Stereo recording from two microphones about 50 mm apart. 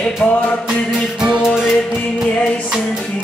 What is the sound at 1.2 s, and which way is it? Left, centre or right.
Music, centre.